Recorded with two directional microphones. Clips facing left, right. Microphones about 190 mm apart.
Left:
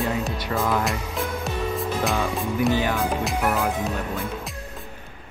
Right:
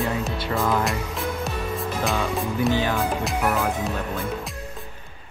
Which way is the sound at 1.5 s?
Centre (ahead or behind).